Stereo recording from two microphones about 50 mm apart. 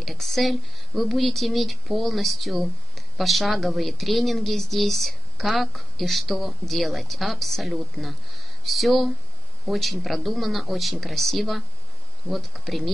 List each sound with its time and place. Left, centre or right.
0.0 s speech: centre